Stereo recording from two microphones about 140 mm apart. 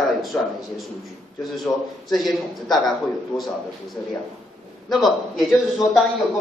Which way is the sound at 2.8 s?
Centre (ahead or behind).